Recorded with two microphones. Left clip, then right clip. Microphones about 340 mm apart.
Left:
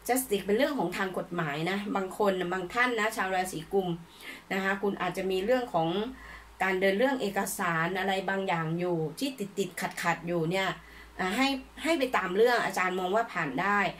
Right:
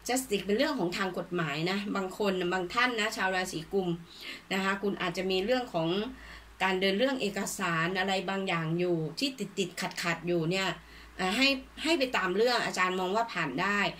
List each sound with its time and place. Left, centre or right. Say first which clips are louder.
0.0 s speech: left 2 dB; centre
3.7 s speech: left 3 dB; left
4.5 s speech: left 1 dB; centre